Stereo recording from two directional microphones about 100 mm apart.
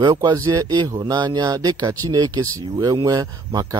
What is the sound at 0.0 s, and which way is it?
Speech, 40° right (ahead or behind).